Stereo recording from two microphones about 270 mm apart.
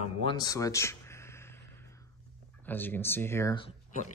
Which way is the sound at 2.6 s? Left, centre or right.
Centre.